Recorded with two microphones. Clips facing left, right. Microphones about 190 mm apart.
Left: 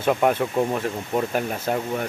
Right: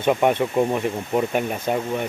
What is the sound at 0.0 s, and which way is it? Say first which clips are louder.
Speech: right 1 dB; centre (ahead or behind).